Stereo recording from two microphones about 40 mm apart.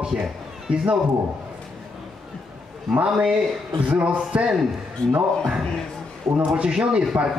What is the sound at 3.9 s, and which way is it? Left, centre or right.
Speech, right.